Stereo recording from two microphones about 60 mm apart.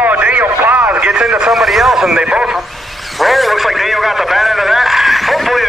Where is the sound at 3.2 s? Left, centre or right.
Centre.